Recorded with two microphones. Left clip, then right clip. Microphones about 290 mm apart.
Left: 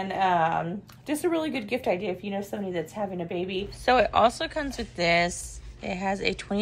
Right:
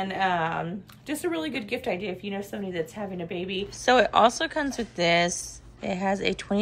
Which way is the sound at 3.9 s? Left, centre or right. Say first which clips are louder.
Right 1 dB; centre.